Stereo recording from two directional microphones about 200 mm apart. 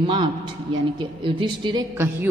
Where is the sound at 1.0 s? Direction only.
25° right (ahead or behind).